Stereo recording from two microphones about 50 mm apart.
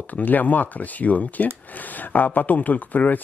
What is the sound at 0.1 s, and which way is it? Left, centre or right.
Speech, left.